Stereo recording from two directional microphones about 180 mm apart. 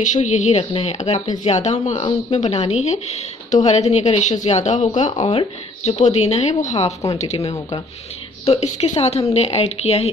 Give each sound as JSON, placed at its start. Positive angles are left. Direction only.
{"t": 0.0, "sound": "a woman's voice", "side_deg": 40}